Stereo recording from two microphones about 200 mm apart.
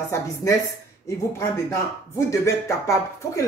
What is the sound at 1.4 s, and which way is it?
Speech, 15° left (ahead or behind).